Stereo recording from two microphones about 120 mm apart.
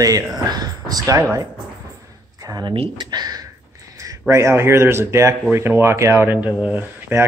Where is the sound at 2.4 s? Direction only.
30° right (ahead or behind).